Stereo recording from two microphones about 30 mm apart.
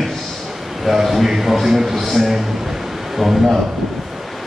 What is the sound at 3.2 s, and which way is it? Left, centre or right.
Speech, centre.